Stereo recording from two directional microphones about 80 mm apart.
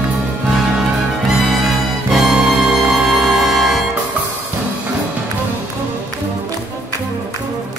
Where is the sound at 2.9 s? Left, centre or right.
Centre.